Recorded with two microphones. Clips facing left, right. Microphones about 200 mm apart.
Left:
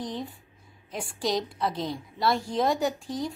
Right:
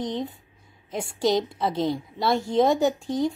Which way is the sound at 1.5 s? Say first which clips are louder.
Right 5 dB; 25° right (ahead or behind).